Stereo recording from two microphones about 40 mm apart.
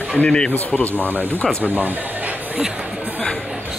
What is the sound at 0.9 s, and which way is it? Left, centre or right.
Speech, right.